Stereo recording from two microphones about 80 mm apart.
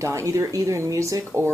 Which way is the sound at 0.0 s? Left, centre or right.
Right.